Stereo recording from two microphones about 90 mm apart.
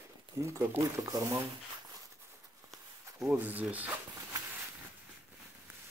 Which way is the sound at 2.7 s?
5° right (ahead or behind).